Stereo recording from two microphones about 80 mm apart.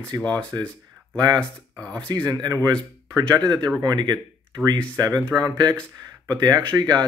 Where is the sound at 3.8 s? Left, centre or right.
Right.